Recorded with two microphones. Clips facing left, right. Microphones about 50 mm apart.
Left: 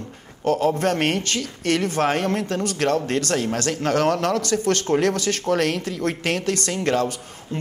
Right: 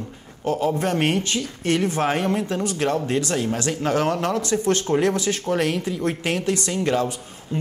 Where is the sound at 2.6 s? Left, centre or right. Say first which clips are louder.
Left 1 dB; left.